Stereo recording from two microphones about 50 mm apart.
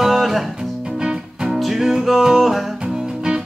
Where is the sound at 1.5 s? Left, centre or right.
Centre.